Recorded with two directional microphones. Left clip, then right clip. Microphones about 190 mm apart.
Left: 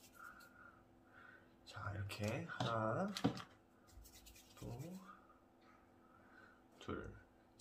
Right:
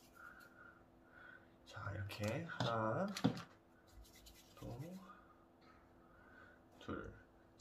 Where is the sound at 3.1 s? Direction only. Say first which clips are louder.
Right 1 dB; 20° right (ahead or behind).